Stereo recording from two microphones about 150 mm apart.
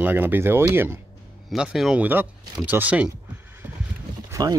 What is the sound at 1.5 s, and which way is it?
Speech, 5° right (ahead or behind).